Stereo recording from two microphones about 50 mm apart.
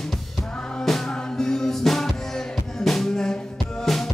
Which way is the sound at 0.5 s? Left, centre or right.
Centre.